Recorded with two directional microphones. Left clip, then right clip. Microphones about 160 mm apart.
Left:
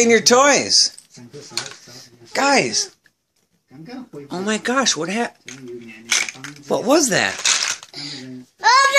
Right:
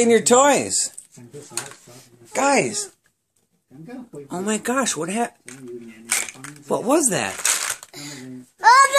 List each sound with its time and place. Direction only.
0.0 s speech: 20° right (ahead or behind)
2.3 s speech: 5° right (ahead or behind)
7.6 s coin: 15° right (ahead or behind)
8.5 s a child's voice: 5° left (ahead or behind)